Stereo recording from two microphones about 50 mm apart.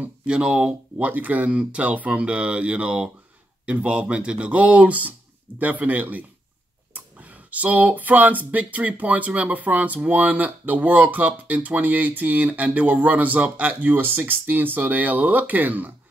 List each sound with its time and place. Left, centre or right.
0.3 s speech: centre; by 15.9 s right